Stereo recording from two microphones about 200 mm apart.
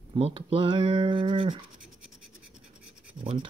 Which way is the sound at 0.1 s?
25° right (ahead or behind).